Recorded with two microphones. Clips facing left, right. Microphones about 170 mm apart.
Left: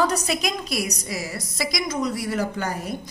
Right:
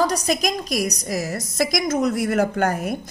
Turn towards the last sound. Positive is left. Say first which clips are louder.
# right 6 dB
turn(degrees=-50)  # may be behind; listen again after turning